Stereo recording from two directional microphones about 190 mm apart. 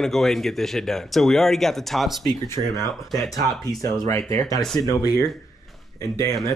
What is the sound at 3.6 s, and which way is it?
Speech, 20° left (ahead or behind).